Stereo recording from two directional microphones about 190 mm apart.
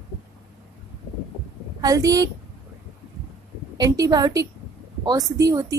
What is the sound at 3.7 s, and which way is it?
Speech, 20° right (ahead or behind).